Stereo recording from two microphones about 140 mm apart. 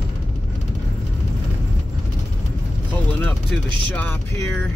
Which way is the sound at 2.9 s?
10° left (ahead or behind).